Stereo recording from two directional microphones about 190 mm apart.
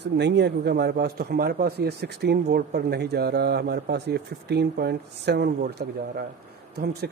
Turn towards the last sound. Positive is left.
turn(degrees=-55)  # may be behind; listen again after turning